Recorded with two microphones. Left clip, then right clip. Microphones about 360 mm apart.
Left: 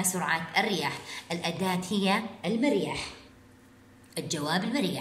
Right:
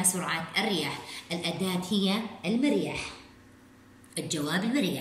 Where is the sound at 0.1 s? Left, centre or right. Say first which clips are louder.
Left 3 dB; centre.